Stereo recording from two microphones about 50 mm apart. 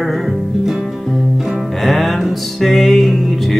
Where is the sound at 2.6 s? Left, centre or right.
Centre.